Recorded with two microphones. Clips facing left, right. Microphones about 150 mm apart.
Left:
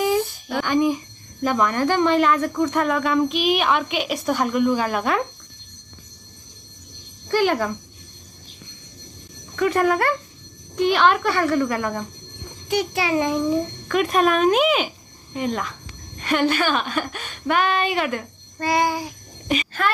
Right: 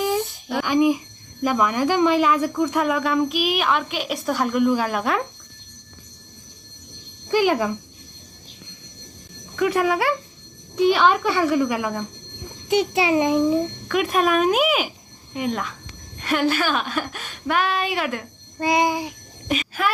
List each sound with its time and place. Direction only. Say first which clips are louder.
0.5 s speech: right 2 dB; 5° right (ahead or behind)
7.2 s speech: right 1 dB; 10° right (ahead or behind)
9.6 s speech: left 1 dB; 5° right (ahead or behind)
12.6 s a child's voice: right 3 dB; 20° right (ahead or behind)
13.8 s speech: left 3 dB; 5° right (ahead or behind)
18.6 s a child's voice: right 1 dB; 20° right (ahead or behind)
19.4 s a sound: left 1 dB; centre (ahead or behind)